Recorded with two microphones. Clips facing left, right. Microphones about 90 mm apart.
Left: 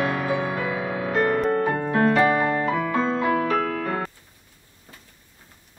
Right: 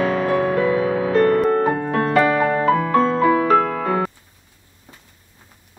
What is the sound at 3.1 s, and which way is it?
Music, 60° right (ahead or behind).